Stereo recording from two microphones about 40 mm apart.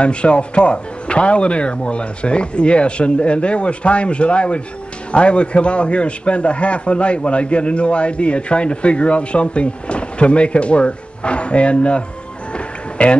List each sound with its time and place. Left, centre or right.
0.0 s a man's voice: left
12.5 s music: left